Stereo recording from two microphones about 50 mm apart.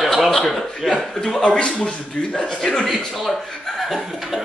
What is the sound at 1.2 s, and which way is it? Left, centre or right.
A man's voice, centre.